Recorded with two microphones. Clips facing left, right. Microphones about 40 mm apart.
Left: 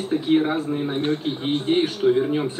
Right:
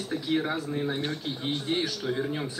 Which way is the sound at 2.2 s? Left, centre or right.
Left.